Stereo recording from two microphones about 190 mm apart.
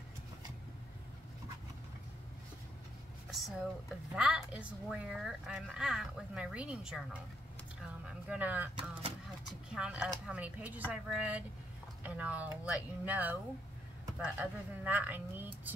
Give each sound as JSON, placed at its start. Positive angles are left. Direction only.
{"t": 3.3, "sound": "a sound", "side_deg": 0}
{"t": 4.1, "sound": "speech", "side_deg": -5}
{"t": 8.7, "sound": "speech", "side_deg": -30}
{"t": 9.7, "sound": "speech", "side_deg": -5}